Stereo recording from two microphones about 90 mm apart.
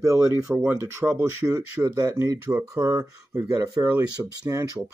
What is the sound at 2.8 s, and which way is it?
Speech, 40° right (ahead or behind).